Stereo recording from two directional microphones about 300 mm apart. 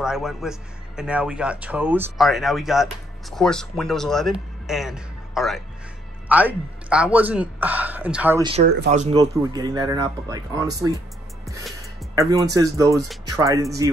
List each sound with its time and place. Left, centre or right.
0.0 s a man's voice: centre
12.2 s speech: centre